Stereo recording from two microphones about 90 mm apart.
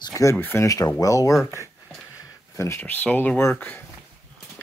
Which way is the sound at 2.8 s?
20° left (ahead or behind).